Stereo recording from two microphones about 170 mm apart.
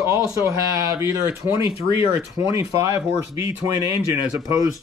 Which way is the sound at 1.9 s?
30° left (ahead or behind).